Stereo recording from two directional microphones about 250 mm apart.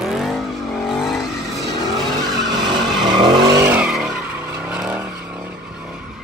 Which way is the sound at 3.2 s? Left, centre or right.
Centre.